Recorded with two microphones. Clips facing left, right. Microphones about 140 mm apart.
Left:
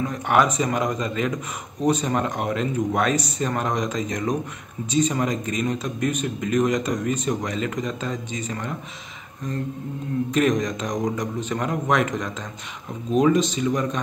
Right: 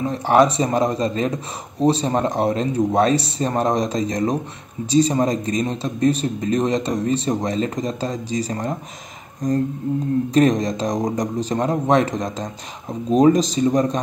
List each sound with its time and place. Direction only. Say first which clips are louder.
0.0 s speech: right 5 dB; 30° right (ahead or behind)